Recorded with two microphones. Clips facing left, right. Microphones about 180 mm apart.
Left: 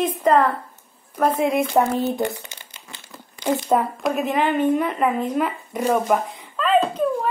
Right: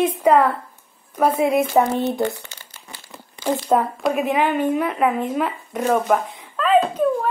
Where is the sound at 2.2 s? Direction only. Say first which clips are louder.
Right 2 dB; 15° left (ahead or behind).